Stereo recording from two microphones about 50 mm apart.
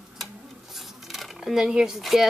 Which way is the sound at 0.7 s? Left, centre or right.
Centre.